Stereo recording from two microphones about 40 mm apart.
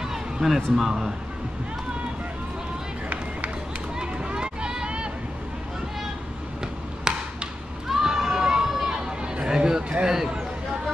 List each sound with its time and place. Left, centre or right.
0.1 s a sound: centre
0.7 s speech: centre
4.0 s run: right
7.1 s a sound: centre
7.9 s run: centre
8.9 s chatter: centre
10.0 s speech: centre